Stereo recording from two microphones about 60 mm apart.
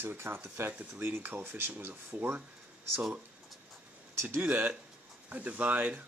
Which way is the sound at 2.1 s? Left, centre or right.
Right.